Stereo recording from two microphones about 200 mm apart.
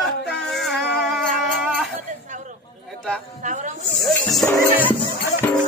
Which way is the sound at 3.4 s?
40° right (ahead or behind).